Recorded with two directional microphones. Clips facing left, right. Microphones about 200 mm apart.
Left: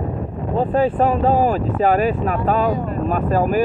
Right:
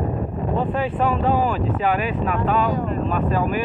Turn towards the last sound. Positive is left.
turn(degrees=40)  # may be behind; listen again after turning